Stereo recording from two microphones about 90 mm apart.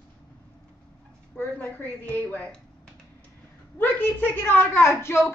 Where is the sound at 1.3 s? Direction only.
20° left (ahead or behind).